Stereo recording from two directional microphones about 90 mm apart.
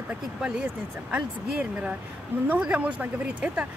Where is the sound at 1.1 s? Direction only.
15° right (ahead or behind).